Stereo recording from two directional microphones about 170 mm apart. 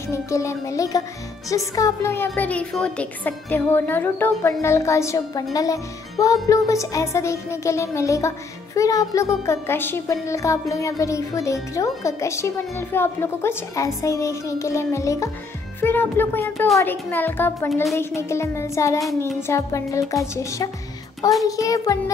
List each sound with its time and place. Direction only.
0.1 s a woman's voice: 15° left (ahead or behind)
21.5 s music: 20° left (ahead or behind)